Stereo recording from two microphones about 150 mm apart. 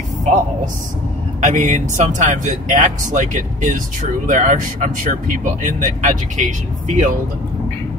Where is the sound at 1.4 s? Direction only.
55° right (ahead or behind).